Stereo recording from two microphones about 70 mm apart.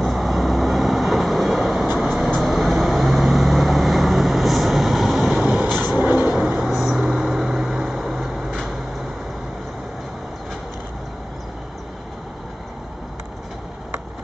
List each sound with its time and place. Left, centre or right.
0.0 s vehicle: centre
5.9 s vehicle: right
6.3 s vehicle: centre